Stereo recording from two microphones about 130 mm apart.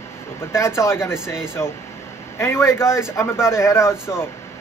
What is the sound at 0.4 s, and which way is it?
Speech, 20° left (ahead or behind).